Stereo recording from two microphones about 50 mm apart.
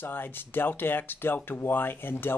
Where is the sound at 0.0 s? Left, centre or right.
Left.